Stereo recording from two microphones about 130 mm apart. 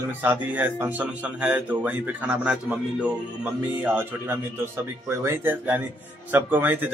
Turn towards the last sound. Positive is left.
turn(degrees=-15)  # may be behind; listen again after turning